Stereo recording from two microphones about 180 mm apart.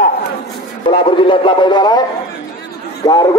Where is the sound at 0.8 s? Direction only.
30° left (ahead or behind).